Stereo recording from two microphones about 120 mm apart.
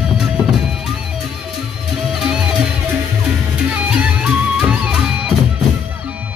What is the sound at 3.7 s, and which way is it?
Music, 10° right (ahead or behind).